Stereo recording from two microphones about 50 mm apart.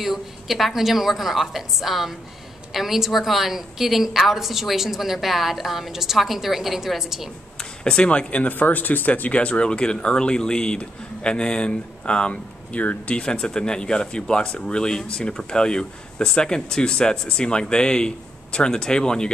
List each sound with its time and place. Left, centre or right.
0.0 s a woman's voice: centre
7.8 s speech: left